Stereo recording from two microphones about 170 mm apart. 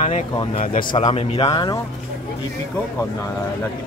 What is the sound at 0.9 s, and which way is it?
Speech, 35° left (ahead or behind).